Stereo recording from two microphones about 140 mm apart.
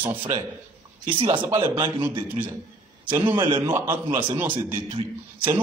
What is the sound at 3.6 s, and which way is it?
Speech, 15° right (ahead or behind).